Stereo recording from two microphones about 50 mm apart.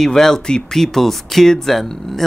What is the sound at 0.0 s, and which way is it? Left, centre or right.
A man's voice, centre.